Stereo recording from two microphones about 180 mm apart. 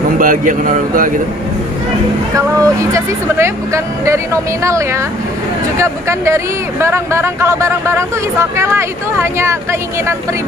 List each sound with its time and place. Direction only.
0.2 s a man's voice: 50° right (ahead or behind)
2.3 s speech: 15° right (ahead or behind)